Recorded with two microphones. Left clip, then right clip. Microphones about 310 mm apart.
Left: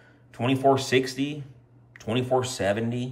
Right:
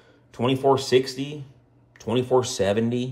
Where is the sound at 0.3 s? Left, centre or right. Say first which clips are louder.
Right 1 dB; centre.